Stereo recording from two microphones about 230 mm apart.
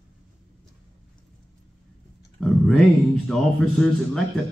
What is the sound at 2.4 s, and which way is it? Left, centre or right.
A man's voice, centre.